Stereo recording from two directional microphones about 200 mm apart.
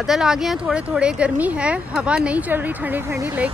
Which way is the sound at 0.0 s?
Centre (ahead or behind).